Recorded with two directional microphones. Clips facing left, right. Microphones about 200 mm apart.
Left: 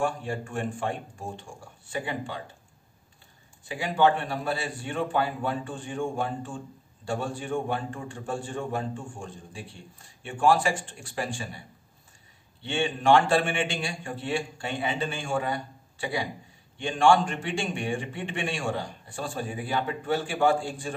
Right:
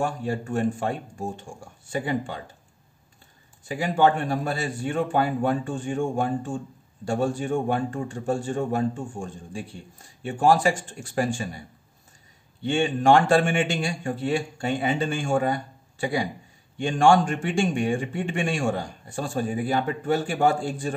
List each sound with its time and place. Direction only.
0.0 s a man's voice: 40° right (ahead or behind)
3.6 s a man's voice: 45° right (ahead or behind)
12.6 s a man's voice: 45° right (ahead or behind)